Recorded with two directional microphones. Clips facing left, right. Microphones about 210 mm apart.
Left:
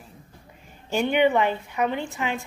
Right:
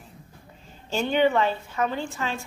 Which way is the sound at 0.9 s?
15° left (ahead or behind).